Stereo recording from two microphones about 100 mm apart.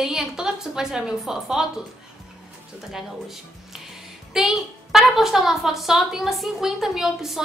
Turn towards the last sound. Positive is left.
turn(degrees=-5)  # may be behind; listen again after turning